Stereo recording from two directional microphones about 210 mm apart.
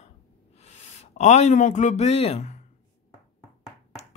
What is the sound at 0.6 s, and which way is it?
A man's voice, 30° left (ahead or behind).